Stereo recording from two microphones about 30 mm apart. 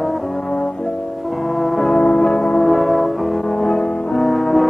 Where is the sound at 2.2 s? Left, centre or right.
Left.